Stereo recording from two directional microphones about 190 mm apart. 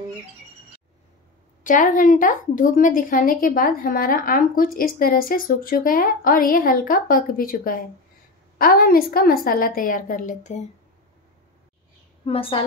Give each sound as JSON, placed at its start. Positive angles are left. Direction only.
{"t": 1.6, "sound": "a woman's voice", "side_deg": 45}
{"t": 12.3, "sound": "a woman's voice", "side_deg": 30}